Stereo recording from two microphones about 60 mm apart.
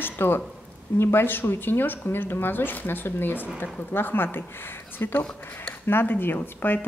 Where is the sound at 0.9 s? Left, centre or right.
Left.